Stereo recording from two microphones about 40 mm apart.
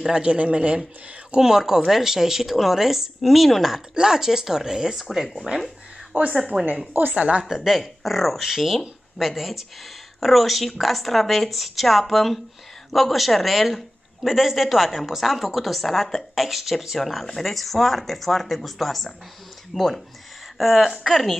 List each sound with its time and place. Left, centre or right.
0.0 s speech: right
1.3 s speech: centre
3.7 s speech: centre
6.1 s a woman's voice: right
6.9 s a woman's voice: right
7.2 s a woman's voice: right
7.4 s speech: centre
20.5 s speech: centre